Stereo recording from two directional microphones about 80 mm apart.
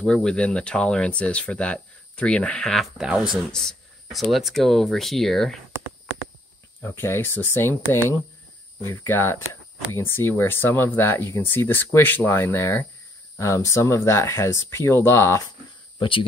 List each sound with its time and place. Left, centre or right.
0.0 s speech: centre
2.7 s speech: centre
6.8 s speech: left
16.0 s speech: left